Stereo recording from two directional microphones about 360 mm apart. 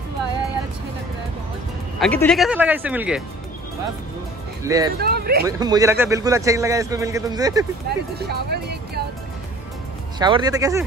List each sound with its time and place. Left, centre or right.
2.0 s speech: centre
4.6 s a man's voice: centre
4.9 s speech: right
5.4 s a man's voice: centre
7.9 s speech: right
10.1 s a man's voice: centre